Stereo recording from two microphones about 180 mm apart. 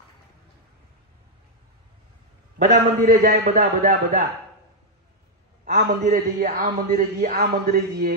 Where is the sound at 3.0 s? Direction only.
50° right (ahead or behind).